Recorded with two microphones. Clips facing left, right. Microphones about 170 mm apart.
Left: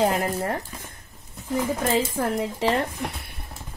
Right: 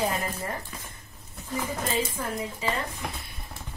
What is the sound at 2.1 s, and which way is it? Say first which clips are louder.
Speech: left 7 dB; 85° left.